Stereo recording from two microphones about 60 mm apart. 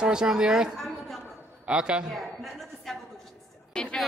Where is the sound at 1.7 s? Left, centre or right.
Centre.